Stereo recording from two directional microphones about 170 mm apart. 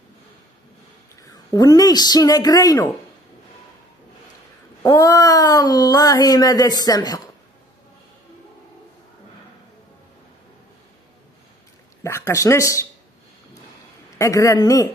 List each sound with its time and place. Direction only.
1.3 s speech: 20° left (ahead or behind)
4.8 s speech: 20° left (ahead or behind)
12.0 s speech: 15° left (ahead or behind)
14.1 s speech: 20° left (ahead or behind)